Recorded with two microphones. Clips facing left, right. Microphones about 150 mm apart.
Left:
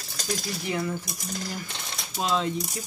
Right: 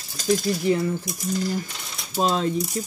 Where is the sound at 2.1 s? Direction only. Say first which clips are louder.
Right 4 dB; 40° right (ahead or behind).